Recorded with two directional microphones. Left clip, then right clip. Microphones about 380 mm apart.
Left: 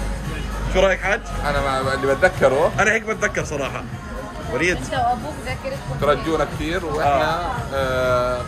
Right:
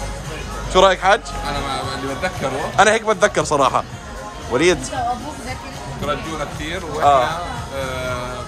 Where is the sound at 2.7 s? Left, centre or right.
Centre.